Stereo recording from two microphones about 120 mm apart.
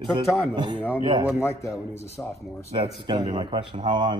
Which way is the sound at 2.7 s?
45° right (ahead or behind).